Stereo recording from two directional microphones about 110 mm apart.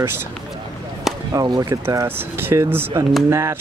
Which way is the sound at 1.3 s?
35° right (ahead or behind).